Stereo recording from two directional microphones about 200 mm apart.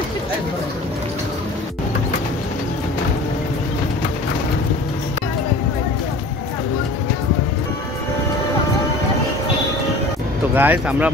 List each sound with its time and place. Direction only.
10.5 s speech: 10° right (ahead or behind)